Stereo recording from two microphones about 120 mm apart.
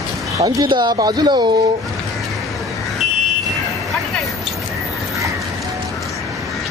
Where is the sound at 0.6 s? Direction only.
40° right (ahead or behind).